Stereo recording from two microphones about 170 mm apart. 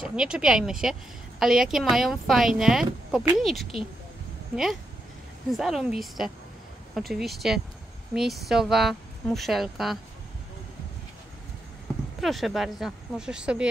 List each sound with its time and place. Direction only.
0.0 s speech: 5° right (ahead or behind)
5.5 s speech: centre (ahead or behind)
12.2 s speech: centre (ahead or behind)